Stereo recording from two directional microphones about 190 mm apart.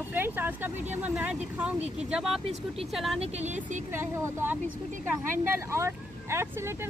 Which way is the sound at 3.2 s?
40° right (ahead or behind).